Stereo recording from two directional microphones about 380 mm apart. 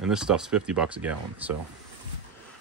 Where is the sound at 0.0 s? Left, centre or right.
Centre.